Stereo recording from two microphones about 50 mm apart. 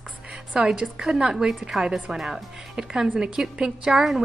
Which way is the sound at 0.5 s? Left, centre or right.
Centre.